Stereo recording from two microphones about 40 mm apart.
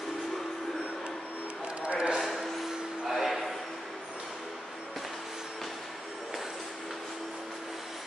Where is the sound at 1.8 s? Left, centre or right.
Right.